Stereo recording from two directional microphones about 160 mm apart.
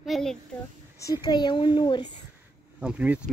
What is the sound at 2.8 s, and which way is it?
Speech, 10° right (ahead or behind).